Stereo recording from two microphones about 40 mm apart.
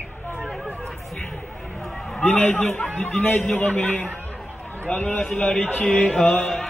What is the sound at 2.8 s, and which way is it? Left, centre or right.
Speech, left.